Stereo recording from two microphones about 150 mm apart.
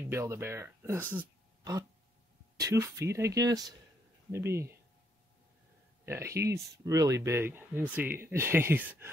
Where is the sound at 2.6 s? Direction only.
20° right (ahead or behind).